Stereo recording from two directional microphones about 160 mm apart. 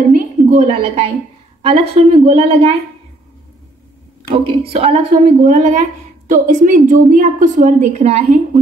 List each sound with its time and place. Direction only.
0.1 s a sound: 50° right (ahead or behind)
0.7 s a woman's voice: 35° right (ahead or behind)
4.7 s a woman's voice: 35° right (ahead or behind)
5.4 s a woman's voice: 50° right (ahead or behind)